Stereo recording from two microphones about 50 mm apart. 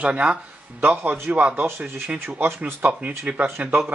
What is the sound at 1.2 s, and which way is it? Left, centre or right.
Speech, right.